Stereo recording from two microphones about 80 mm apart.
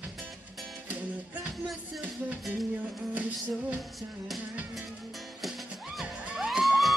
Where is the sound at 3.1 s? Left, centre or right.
Centre.